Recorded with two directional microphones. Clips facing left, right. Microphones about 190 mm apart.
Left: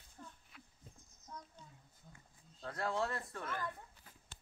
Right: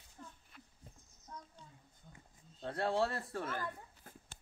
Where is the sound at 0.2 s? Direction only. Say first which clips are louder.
Right 1 dB; 5° left (ahead or behind).